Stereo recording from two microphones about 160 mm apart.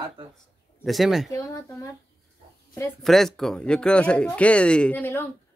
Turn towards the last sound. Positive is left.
turn(degrees=10)  # may be behind; listen again after turning